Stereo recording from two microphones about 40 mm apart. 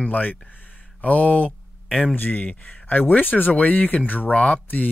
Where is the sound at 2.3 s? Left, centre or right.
Left.